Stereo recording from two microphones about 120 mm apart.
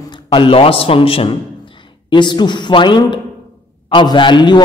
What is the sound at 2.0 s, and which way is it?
A man's voice, 40° left (ahead or behind).